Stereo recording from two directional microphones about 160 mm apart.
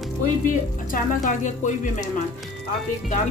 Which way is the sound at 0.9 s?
55° left (ahead or behind).